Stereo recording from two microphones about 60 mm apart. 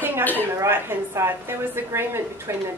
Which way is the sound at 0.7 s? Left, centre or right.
Right.